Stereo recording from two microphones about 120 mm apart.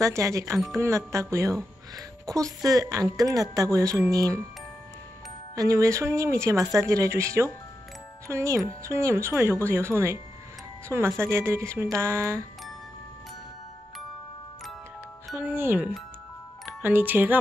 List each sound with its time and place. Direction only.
0.0 s a woman's voice: 25° right (ahead or behind)
5.6 s a woman's voice: 25° right (ahead or behind)
11.1 s a woman's voice: 20° right (ahead or behind)
15.4 s speech: 15° right (ahead or behind)